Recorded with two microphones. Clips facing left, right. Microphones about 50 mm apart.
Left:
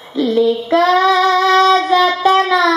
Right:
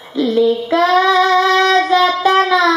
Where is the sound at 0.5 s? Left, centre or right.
Centre.